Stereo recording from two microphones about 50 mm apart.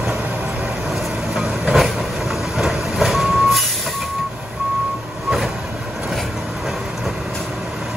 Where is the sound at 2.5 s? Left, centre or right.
Centre.